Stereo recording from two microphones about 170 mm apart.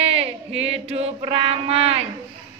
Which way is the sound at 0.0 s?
35° right (ahead or behind).